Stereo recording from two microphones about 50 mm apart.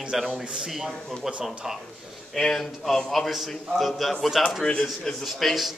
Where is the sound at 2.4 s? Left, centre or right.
Centre.